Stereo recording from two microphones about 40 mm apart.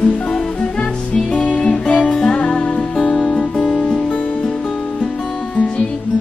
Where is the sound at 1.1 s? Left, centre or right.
Left.